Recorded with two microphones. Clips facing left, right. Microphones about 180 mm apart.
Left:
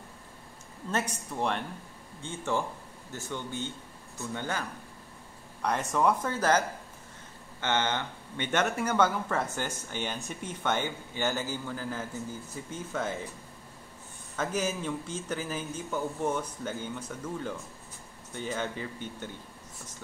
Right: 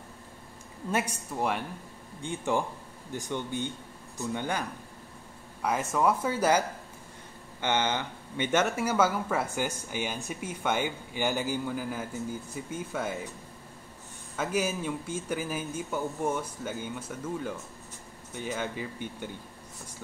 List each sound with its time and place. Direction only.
0.9 s speech: 10° right (ahead or behind)
5.6 s speech: 5° right (ahead or behind)
7.6 s speech: 15° right (ahead or behind)
14.3 s speech: 10° right (ahead or behind)